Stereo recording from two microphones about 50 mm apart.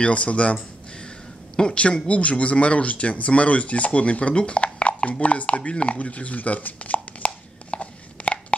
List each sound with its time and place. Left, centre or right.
0.0 s speech: left
1.6 s speech: left
4.7 s a sound: left